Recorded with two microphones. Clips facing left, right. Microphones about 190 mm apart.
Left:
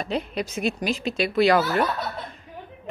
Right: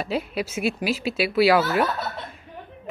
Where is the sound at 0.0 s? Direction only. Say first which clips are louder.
Right 1 dB; 5° right (ahead or behind).